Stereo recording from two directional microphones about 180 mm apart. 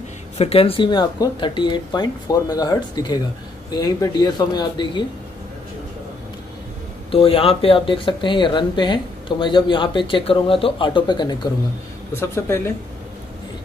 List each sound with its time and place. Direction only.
0.4 s speech: 30° left (ahead or behind)
7.1 s speech: 30° left (ahead or behind)
12.1 s speech: 15° left (ahead or behind)